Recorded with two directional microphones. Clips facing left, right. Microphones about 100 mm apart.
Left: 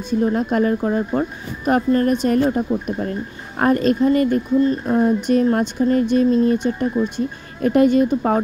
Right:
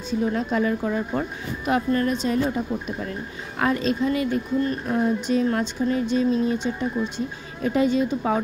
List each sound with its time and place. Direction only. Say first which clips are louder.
0.1 s speech: left 5 dB; 40° left (ahead or behind)
4.6 s speech: left 6 dB; 35° left (ahead or behind)
5.2 s speech: left 5 dB; 55° left (ahead or behind)